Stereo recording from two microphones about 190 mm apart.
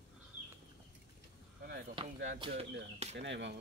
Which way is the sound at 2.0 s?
25° right (ahead or behind).